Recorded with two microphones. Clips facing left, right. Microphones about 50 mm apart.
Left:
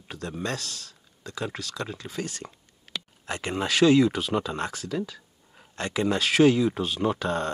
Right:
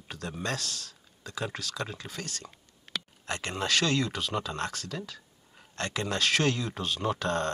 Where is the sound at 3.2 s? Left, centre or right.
Centre.